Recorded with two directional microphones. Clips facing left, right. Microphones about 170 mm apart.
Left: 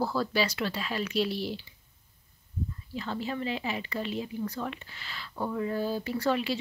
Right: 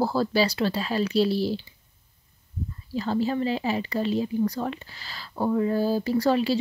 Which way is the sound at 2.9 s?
35° right (ahead or behind).